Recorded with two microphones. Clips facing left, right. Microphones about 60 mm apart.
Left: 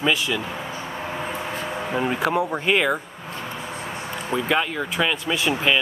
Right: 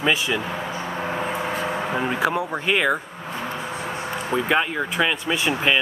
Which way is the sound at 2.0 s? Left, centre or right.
Centre.